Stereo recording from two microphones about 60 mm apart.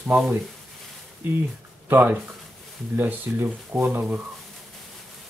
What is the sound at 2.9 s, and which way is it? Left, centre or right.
Speech, right.